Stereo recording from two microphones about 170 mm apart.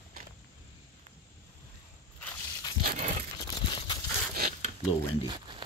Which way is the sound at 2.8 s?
50° right (ahead or behind).